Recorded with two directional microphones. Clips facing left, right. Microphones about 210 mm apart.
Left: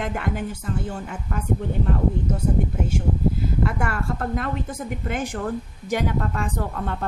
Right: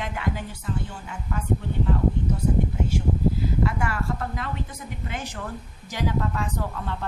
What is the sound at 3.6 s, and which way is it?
Speech, 50° left (ahead or behind).